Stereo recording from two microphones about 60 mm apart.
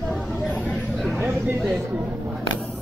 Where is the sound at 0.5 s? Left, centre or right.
Left.